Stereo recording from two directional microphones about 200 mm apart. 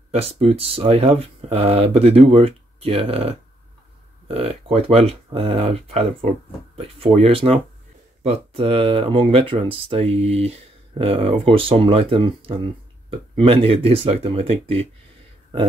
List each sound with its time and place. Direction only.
0.1 s speech: 30° right (ahead or behind)